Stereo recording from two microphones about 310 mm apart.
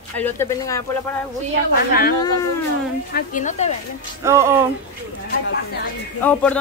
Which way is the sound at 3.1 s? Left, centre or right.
Left.